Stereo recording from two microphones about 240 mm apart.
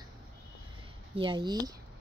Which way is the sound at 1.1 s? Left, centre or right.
Centre.